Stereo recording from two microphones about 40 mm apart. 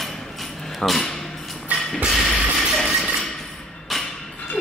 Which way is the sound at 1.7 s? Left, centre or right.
Left.